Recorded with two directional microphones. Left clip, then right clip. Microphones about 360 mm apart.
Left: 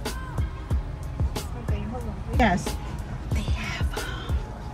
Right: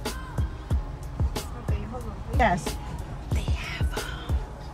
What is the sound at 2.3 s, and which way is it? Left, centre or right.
Speech, right.